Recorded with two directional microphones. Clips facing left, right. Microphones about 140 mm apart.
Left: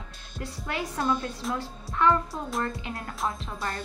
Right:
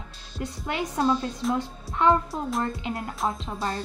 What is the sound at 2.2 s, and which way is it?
Speech, centre (ahead or behind).